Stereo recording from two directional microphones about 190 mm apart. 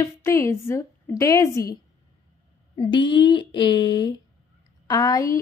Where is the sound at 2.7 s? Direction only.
25° left (ahead or behind).